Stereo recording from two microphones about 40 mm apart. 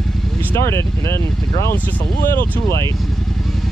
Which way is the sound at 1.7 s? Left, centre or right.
Left.